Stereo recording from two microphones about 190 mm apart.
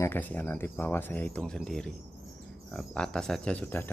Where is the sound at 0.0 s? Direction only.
10° left (ahead or behind).